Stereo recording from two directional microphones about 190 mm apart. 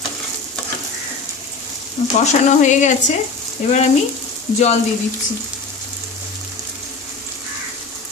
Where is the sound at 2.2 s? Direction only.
40° left (ahead or behind).